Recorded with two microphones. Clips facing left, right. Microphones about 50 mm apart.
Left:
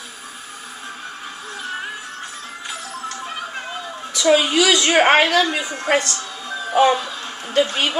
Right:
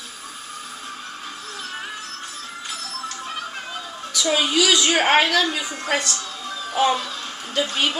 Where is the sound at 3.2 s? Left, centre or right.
Centre.